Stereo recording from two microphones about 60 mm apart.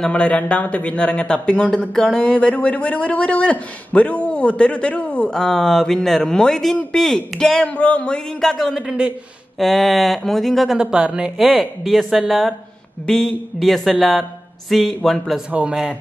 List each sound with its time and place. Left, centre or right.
0.0 s speech: centre
7.7 s speech: left; by 8.8 s centre
8.8 s a man's voice: centre
9.6 s speech: centre
10.8 s speech: centre
11.3 s speech: centre
15.5 s a man's voice: right